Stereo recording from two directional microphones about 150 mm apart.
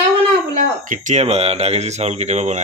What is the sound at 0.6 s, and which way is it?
Speech, 60° right (ahead or behind).